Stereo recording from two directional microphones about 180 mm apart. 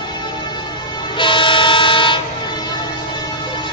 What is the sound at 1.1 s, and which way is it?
Train, 30° left (ahead or behind).